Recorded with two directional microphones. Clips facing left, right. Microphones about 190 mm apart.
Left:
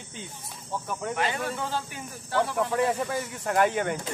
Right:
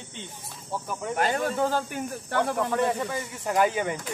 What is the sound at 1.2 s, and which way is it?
Speech, 45° right (ahead or behind).